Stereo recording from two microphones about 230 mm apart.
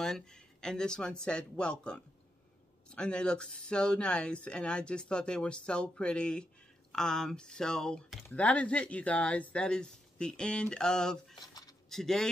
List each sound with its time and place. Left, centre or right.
0.0 s speech: centre
11.3 s cutlery: centre
11.9 s speech: centre